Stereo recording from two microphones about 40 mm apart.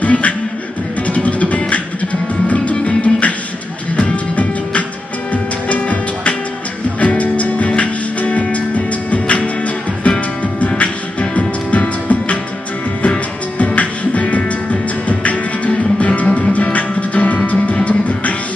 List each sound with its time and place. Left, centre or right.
0.0 s beatboxing: left
1.0 s music: left
3.0 s beatboxing: left
3.9 s music: left